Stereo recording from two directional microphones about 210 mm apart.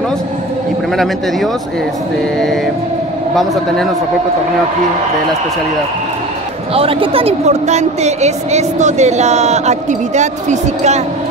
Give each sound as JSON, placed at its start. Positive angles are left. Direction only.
{"t": 6.7, "sound": "a woman's voice", "side_deg": -25}